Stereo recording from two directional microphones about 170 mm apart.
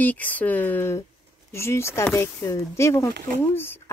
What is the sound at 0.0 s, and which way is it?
Speech, 10° left (ahead or behind).